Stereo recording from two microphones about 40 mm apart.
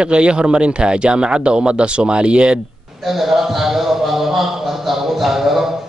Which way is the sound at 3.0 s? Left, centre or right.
Centre.